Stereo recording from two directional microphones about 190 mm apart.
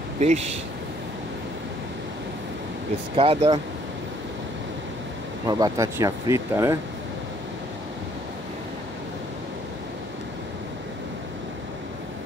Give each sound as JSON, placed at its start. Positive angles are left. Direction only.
{"t": 0.2, "sound": "speech", "side_deg": -35}
{"t": 3.2, "sound": "speech", "side_deg": -25}
{"t": 5.5, "sound": "speech", "side_deg": -20}